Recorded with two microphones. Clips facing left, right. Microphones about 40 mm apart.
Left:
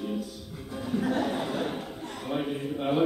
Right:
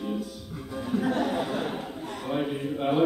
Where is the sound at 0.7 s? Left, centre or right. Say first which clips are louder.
Right 1 dB; centre.